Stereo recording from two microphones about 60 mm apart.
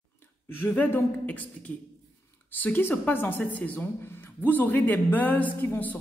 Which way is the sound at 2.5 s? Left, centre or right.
Left.